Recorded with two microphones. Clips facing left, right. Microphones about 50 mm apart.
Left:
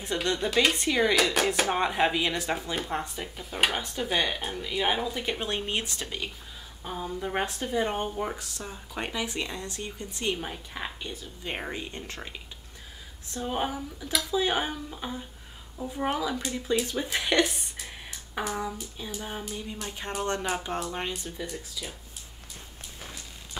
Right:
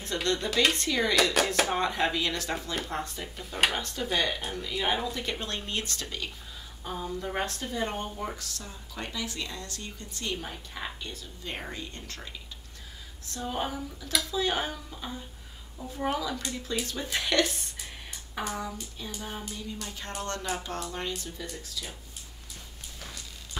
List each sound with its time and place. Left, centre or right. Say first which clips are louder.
0.0 s speech: left 1 dB; centre
0.7 s speech: left 3 dB; centre
1.1 s speech: left 1 dB; centre
1.7 s speech: left 2 dB; centre